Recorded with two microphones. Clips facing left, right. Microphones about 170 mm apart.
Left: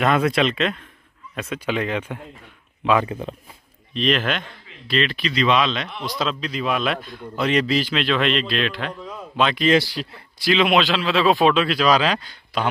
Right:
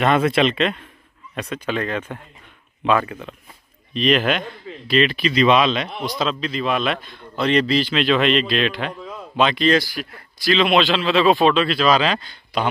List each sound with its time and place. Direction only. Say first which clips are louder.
0.0 s a man's voice: right 2 dB; centre (ahead or behind)
3.0 s speech: left 2 dB; 30° left (ahead or behind)
3.9 s a man's voice: right 3 dB; 5° right (ahead or behind)
6.0 s a man's voice: right 1 dB; centre (ahead or behind)